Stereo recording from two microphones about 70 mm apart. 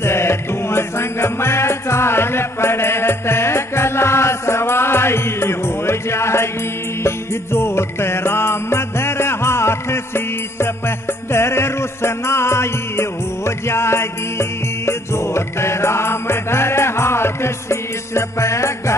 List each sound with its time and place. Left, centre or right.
0.0 s music: left